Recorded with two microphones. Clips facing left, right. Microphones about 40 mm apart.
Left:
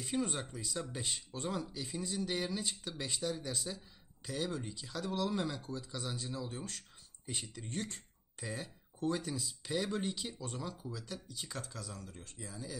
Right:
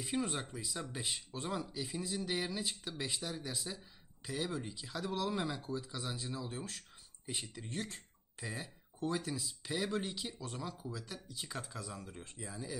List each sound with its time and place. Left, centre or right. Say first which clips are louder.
0.0 s speech: left 1 dB; centre